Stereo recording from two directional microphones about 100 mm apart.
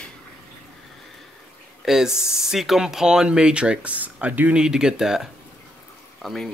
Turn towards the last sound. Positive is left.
turn(degrees=5)  # may be behind; listen again after turning